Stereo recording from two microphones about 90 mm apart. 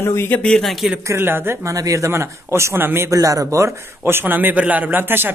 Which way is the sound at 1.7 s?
35° right (ahead or behind).